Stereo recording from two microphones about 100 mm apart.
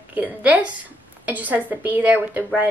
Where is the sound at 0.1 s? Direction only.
15° right (ahead or behind).